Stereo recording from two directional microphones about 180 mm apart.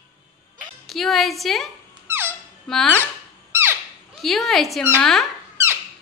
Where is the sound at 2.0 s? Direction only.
10° right (ahead or behind).